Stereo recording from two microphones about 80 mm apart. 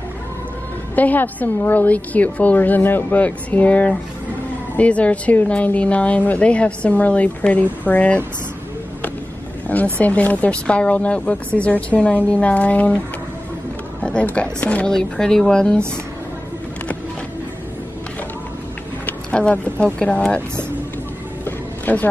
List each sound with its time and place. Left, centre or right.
0.9 s a woman's voice: left
9.9 s a woman's voice: centre
14.0 s a woman's voice: centre
19.0 s speech: centre
21.5 s roaring cats: left